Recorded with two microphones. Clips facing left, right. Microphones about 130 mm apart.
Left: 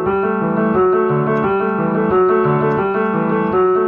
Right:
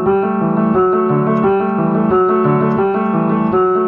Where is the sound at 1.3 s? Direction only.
20° right (ahead or behind).